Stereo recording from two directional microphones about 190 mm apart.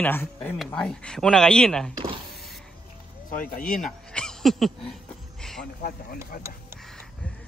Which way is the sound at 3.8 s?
5° left (ahead or behind).